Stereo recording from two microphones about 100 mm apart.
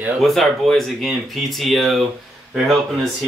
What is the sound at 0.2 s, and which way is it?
Speech, 5° left (ahead or behind).